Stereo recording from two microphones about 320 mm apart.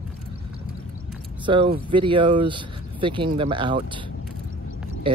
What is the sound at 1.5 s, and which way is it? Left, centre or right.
Speech, centre.